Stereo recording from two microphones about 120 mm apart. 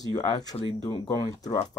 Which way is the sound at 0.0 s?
35° left (ahead or behind).